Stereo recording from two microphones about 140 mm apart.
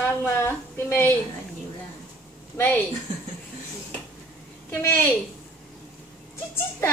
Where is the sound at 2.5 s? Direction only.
15° left (ahead or behind).